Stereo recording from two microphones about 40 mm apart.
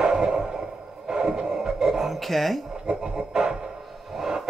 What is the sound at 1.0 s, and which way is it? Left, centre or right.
Music, centre.